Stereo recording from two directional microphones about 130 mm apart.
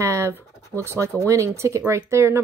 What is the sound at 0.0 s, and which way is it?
Speech, 20° right (ahead or behind).